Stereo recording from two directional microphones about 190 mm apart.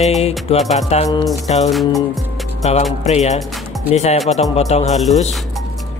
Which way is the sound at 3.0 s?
35° left (ahead or behind).